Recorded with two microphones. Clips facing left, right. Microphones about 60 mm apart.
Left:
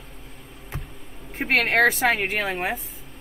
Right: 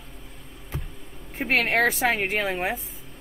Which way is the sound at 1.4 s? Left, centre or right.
Left.